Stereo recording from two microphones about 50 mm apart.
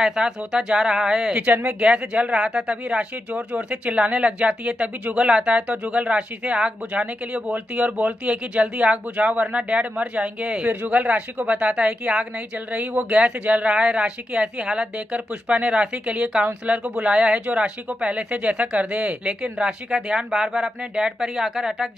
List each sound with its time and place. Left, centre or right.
0.0 s speech: centre
1.4 s speech: right
10.7 s speech: right; by 20.2 s centre
20.2 s speech: centre